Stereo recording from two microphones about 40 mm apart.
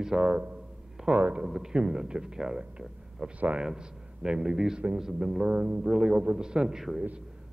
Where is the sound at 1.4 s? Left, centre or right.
Centre.